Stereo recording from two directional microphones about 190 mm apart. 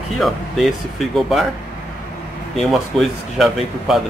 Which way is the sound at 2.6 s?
Centre (ahead or behind).